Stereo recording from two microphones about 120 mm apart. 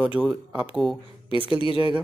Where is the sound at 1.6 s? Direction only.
50° left (ahead or behind).